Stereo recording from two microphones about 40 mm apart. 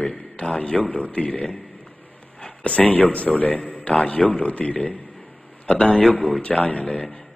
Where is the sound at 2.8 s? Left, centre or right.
Left.